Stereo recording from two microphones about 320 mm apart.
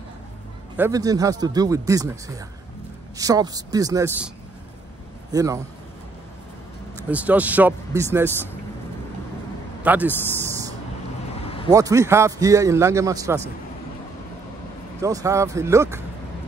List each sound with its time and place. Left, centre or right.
0.7 s a man's voice: centre
5.3 s a man's voice: centre
7.1 s speech: centre
9.8 s speech: centre
11.4 s a sound: centre
11.7 s a man's voice: centre
15.0 s a man's voice: centre